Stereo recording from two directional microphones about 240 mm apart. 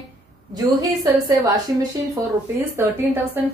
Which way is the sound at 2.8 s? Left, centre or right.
Centre.